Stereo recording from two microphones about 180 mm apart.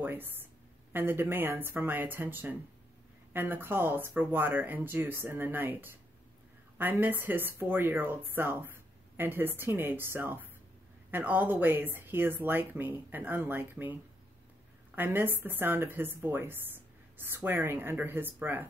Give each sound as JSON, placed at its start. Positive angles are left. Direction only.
{"t": 0.0, "sound": "a woman's voice", "side_deg": -10}
{"t": 15.0, "sound": "speech", "side_deg": -10}